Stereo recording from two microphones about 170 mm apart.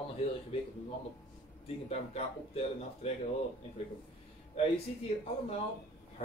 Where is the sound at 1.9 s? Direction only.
40° left (ahead or behind).